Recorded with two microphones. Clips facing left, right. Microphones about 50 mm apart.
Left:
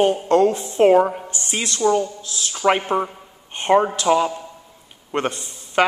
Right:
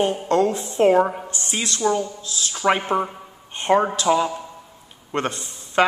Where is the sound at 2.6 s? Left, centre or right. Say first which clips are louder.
Left 1 dB; centre.